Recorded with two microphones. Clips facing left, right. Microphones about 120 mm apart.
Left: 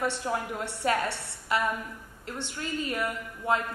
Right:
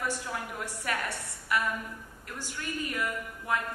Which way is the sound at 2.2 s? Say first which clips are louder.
Left 3 dB; 25° left (ahead or behind).